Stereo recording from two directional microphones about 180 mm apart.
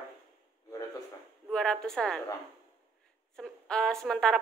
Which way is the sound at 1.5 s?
5° left (ahead or behind).